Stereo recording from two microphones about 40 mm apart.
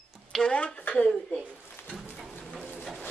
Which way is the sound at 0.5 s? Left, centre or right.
Left.